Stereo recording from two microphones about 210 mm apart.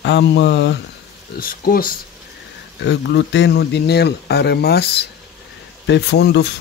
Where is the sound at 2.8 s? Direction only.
55° left (ahead or behind).